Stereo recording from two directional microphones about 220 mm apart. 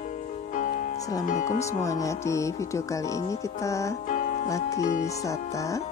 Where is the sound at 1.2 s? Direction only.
35° left (ahead or behind).